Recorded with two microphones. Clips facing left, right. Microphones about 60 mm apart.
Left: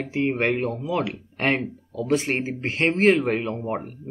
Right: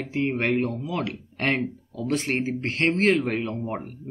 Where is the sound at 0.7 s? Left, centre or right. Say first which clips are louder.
Left 3 dB; centre.